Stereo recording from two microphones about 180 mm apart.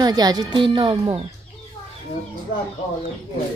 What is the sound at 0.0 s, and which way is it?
Speech, 20° right (ahead or behind).